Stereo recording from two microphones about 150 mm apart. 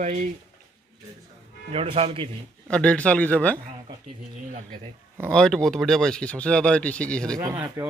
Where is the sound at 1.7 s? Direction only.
40° right (ahead or behind).